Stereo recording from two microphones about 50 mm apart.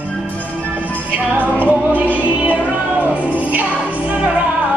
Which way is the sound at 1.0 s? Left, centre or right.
Right.